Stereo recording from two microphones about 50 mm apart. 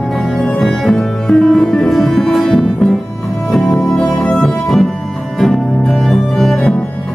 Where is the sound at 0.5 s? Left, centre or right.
Centre.